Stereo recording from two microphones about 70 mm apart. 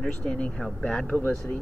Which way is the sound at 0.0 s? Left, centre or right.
Centre.